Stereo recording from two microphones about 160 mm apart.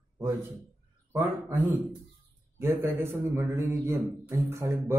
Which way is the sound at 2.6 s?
15° right (ahead or behind).